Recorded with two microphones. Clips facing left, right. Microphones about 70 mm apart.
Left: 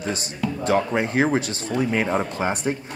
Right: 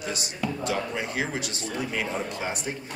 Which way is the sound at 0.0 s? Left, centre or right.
Left.